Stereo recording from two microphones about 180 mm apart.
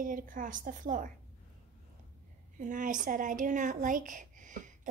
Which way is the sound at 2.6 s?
45° right (ahead or behind).